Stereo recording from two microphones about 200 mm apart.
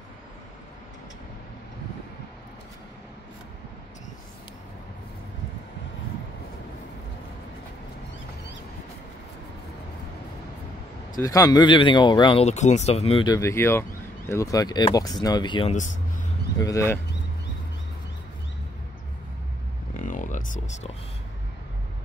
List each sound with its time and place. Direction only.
11.1 s speech: 15° left (ahead or behind)
15.7 s speech: 40° left (ahead or behind)
16.5 s speech: 15° left (ahead or behind)
20.0 s a sound: 40° left (ahead or behind)